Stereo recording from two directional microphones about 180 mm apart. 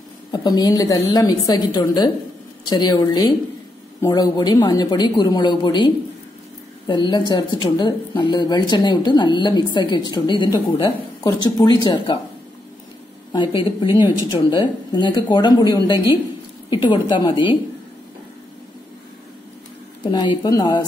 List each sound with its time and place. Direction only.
0.3 s a woman's voice: 25° left (ahead or behind)
13.3 s a woman's voice: 25° left (ahead or behind)
20.1 s a woman's voice: 25° left (ahead or behind)